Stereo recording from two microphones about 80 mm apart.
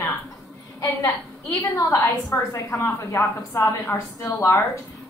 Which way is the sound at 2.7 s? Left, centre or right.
Left.